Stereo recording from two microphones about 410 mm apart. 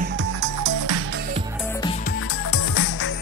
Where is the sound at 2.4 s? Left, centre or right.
Left.